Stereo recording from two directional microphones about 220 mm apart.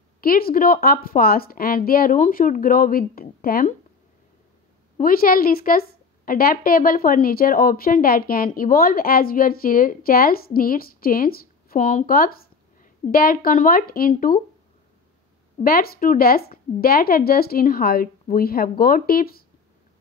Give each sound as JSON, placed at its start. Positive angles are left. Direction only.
{"t": 0.2, "sound": "a woman's voice", "side_deg": 40}
{"t": 4.9, "sound": "a woman's voice", "side_deg": 40}
{"t": 15.5, "sound": "a woman's voice", "side_deg": 40}